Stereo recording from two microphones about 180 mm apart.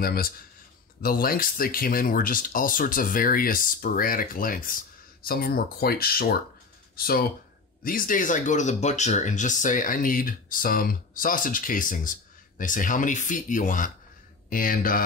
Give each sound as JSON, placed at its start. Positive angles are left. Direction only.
{"t": 0.0, "sound": "speech", "side_deg": 55}